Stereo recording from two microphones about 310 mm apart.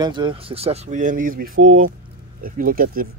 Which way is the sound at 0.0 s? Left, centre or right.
Centre.